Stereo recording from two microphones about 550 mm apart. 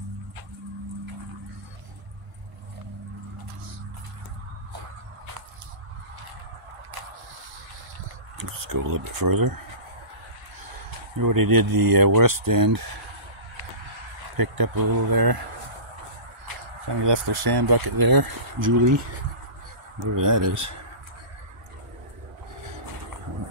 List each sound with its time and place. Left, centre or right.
8.4 s speech: right
11.1 s speech: right
14.3 s speech: right
17.0 s speech: right
20.2 s speech: right